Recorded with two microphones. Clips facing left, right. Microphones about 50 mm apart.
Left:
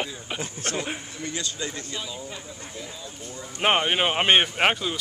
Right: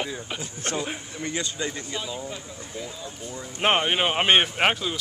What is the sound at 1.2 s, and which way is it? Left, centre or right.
Speech, right.